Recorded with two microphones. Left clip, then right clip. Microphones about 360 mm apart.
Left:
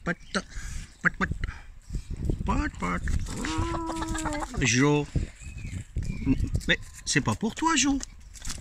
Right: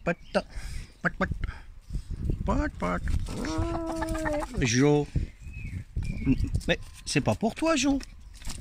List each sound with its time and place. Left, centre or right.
0.0 s a sound: centre
2.4 s speech: centre
6.2 s speech: centre